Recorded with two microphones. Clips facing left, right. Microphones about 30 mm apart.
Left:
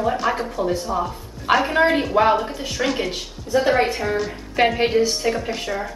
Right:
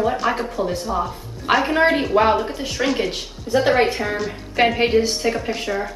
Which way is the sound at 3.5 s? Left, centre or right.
Right.